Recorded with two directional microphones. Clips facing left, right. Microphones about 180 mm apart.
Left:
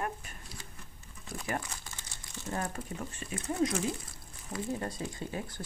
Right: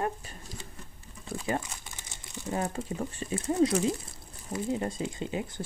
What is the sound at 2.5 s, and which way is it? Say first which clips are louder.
Speech: right 5 dB; 20° right (ahead or behind).